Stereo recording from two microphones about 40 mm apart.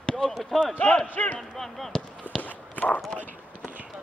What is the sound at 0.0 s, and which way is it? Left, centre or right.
Basketball bounce, left.